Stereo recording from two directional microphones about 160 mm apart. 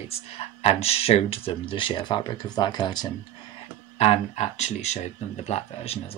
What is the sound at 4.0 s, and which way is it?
Speech, 45° left (ahead or behind).